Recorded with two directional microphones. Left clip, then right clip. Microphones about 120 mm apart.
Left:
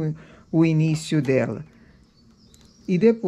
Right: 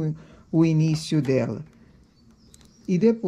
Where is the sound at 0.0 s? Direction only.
Centre (ahead or behind).